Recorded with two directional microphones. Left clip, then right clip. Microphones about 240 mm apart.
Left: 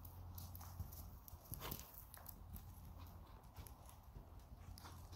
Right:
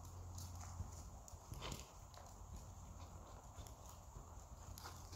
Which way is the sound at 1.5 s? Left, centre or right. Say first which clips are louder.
Right 1 dB; left.